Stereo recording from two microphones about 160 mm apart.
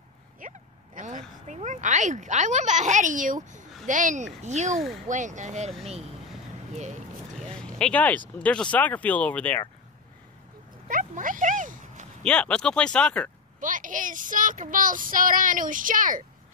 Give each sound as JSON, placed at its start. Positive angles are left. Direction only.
{"t": 0.4, "sound": "a sound", "side_deg": -50}
{"t": 1.5, "sound": "speech", "side_deg": -50}
{"t": 6.7, "sound": "speech", "side_deg": -45}
{"t": 7.3, "sound": "vehicle", "side_deg": 5}
{"t": 8.4, "sound": "speech", "side_deg": 5}
{"t": 10.9, "sound": "a sound", "side_deg": -55}
{"t": 12.2, "sound": "speech", "side_deg": 5}
{"t": 13.6, "sound": "speech", "side_deg": -55}